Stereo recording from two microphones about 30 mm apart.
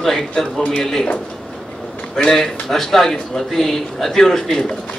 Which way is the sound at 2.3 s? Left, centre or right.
Centre.